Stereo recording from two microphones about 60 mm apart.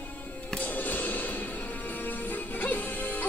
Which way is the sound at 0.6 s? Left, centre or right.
Left.